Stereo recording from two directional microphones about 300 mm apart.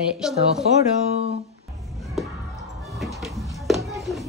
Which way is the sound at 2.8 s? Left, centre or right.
Centre.